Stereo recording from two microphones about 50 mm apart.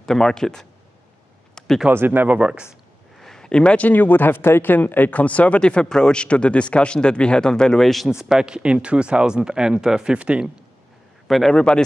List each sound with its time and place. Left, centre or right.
0.0 s speech: centre
1.9 s speech: right
2.3 s speech: right
3.2 s a sound: centre
3.7 s speech: left; by 8.1 s centre
8.1 s speech: centre
10.1 s speech: right
11.2 s a man's voice: centre
11.5 s speech: centre